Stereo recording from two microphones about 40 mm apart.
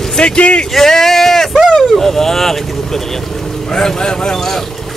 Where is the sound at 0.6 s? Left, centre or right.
Centre.